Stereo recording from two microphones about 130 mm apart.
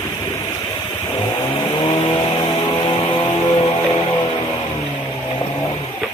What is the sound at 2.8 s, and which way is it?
Music, 40° left (ahead or behind).